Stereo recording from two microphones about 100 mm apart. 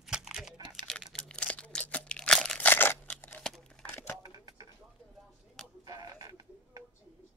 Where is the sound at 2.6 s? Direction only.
20° left (ahead or behind).